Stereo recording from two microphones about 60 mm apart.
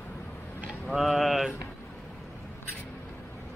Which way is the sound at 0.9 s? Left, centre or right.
Centre.